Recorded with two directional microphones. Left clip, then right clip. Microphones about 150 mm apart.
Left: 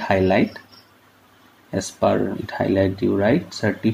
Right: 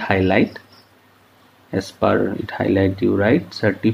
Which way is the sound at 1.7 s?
20° left (ahead or behind).